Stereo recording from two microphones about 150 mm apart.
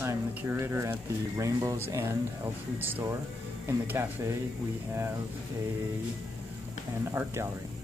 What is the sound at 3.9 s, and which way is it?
Speech, 15° right (ahead or behind).